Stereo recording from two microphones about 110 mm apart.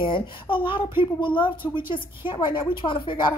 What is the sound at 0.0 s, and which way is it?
A woman's voice, 50° left (ahead or behind).